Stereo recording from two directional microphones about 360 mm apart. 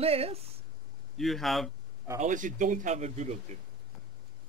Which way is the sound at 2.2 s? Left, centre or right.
Right.